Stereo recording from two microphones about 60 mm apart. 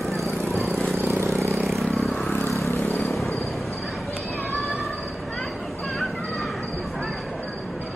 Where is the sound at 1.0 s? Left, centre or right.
Right.